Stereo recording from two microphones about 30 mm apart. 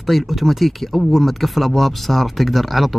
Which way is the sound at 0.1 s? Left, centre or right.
Centre.